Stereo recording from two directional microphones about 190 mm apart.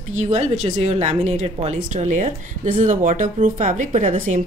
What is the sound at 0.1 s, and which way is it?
Speech, 40° right (ahead or behind).